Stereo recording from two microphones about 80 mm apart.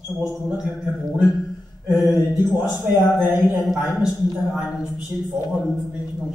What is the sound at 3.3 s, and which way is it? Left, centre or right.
Speech, centre.